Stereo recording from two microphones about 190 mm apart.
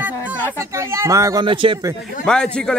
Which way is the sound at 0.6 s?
15° right (ahead or behind).